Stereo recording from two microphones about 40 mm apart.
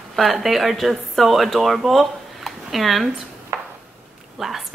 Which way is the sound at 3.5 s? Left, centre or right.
Right.